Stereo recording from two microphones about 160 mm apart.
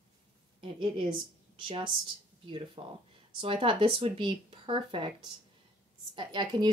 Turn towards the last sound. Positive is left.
turn(degrees=-30)  # may be behind; listen again after turning